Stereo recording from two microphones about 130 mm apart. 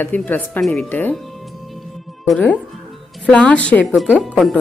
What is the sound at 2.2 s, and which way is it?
A woman's voice, 5° left (ahead or behind).